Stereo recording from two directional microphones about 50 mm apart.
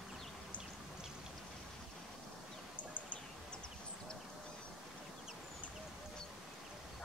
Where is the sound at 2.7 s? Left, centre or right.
Left.